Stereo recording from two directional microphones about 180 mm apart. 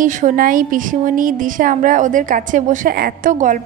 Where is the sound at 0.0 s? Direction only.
45° right (ahead or behind).